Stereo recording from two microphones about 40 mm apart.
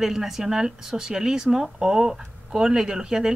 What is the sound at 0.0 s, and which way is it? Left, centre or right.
Speech, centre.